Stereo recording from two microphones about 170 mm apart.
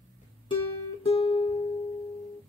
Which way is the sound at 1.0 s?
35° left (ahead or behind).